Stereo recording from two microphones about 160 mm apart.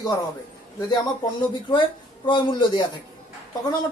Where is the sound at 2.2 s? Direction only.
30° left (ahead or behind).